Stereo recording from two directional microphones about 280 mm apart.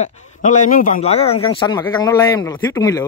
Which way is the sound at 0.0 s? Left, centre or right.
Left.